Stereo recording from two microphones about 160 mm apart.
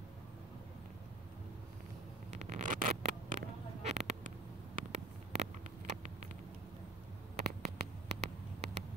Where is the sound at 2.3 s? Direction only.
45° right (ahead or behind).